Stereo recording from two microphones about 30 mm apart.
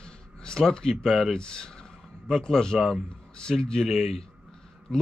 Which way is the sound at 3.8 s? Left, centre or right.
Centre.